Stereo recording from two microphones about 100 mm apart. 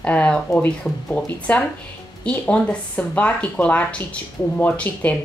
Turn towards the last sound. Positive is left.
turn(degrees=15)  # may be behind; listen again after turning